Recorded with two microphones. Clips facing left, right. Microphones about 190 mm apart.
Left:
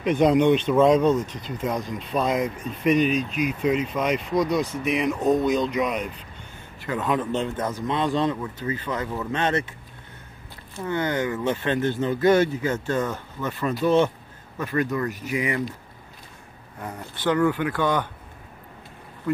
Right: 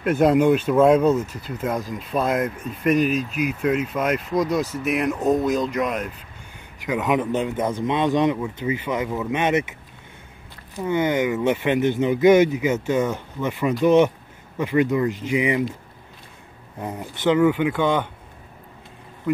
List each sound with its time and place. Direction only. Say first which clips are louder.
0.0 s speech: right 1 dB; 5° right (ahead or behind)
6.9 s speech: right 3 dB; 15° right (ahead or behind)
10.8 s speech: right 4 dB; 20° right (ahead or behind)
16.8 s speech: right 4 dB; 15° right (ahead or behind)